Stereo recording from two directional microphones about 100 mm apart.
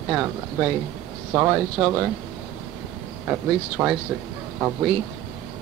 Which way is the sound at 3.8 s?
10° right (ahead or behind).